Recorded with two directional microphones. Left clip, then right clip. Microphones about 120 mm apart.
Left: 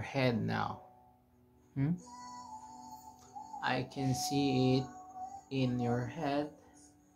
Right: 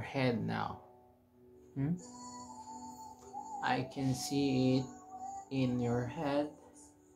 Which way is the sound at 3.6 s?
30° left (ahead or behind).